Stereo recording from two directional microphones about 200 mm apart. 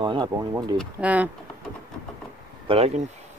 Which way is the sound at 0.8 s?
5° right (ahead or behind).